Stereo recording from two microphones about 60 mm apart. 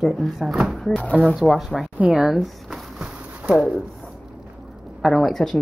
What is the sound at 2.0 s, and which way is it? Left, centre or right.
Speech, centre.